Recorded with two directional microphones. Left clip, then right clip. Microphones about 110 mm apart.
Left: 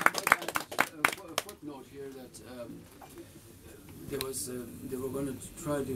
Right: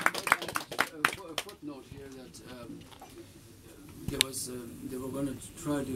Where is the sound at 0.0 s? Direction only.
35° left (ahead or behind).